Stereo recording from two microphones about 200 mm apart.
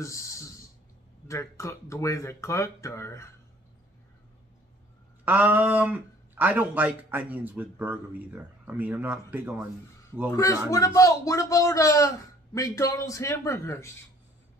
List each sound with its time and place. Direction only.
0.0 s a sound: 15° left (ahead or behind)
1.2 s a man's voice: 15° left (ahead or behind)
5.2 s speech: 10° right (ahead or behind)
10.3 s a man's voice: 15° left (ahead or behind)